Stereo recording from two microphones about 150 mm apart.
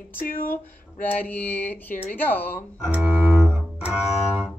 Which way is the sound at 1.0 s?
10° left (ahead or behind).